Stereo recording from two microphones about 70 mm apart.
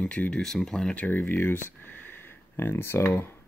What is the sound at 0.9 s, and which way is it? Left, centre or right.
Speech, left.